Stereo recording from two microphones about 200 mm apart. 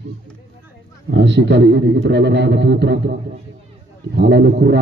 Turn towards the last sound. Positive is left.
turn(degrees=-55)  # may be behind; listen again after turning